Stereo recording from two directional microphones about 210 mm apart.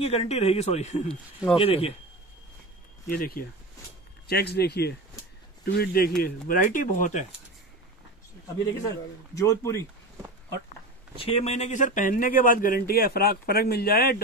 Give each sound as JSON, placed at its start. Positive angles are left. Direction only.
{"t": 0.0, "sound": "speech", "side_deg": 30}
{"t": 3.1, "sound": "speech", "side_deg": 45}
{"t": 9.3, "sound": "speech", "side_deg": 15}
{"t": 11.1, "sound": "speech", "side_deg": 25}